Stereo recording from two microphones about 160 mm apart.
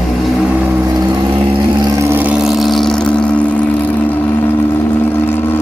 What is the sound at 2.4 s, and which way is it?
Vehicle, centre (ahead or behind).